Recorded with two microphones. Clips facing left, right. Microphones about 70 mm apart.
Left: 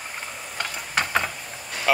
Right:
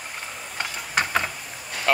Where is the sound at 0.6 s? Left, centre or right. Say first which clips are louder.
Right 1 dB; centre.